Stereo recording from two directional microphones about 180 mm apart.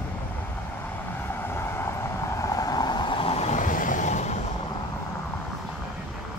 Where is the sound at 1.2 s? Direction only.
10° left (ahead or behind); by 4.4 s 40° left (ahead or behind).